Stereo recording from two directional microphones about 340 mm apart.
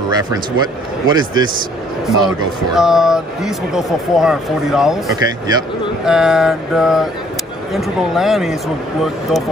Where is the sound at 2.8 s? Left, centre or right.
Centre.